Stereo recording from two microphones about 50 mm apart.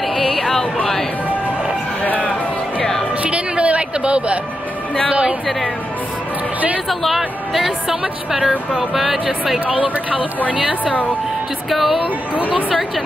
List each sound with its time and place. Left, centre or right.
0.1 s a sound: centre
2.0 s music: left
3.3 s a sound: right
6.9 s speech: centre
10.5 s speech: centre
11.7 s speech: centre